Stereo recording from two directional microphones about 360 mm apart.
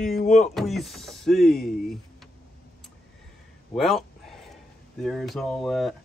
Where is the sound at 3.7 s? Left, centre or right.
Centre.